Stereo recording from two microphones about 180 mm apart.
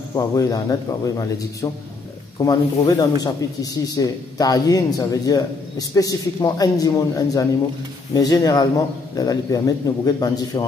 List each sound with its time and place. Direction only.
0.1 s speech: 20° left (ahead or behind)